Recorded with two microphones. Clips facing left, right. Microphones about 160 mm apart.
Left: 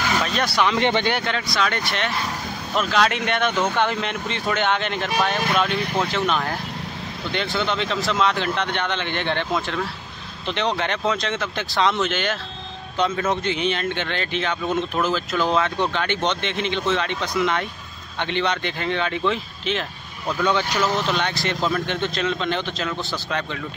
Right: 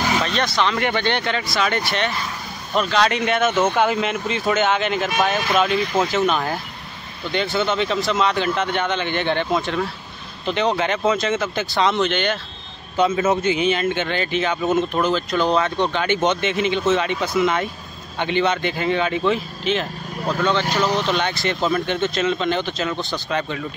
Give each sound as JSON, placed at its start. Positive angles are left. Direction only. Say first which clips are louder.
{"t": 0.2, "sound": "speech", "louder": "right 1 dB", "side_deg": 5}
{"t": 0.7, "sound": "speech", "louder": "left 2 dB", "side_deg": 20}
{"t": 1.0, "sound": "speech", "louder": "right 1 dB", "side_deg": 0}
{"t": 20.9, "sound": "speech", "louder": "right 2 dB", "side_deg": 0}